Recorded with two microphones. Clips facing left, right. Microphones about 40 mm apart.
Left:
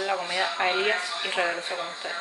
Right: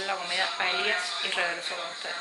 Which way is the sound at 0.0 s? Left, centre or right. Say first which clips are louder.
Left 3 dB; centre.